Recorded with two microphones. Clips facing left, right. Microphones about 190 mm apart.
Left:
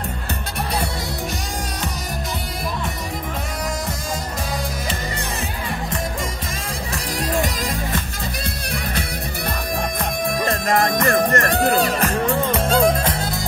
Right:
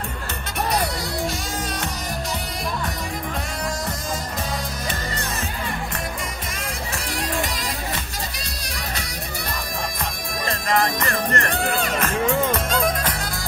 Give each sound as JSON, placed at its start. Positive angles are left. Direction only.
{"t": 7.2, "sound": "music", "side_deg": 45}
{"t": 9.8, "sound": "music", "side_deg": 60}